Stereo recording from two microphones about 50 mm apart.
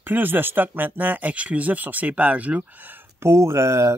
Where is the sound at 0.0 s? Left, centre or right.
Right.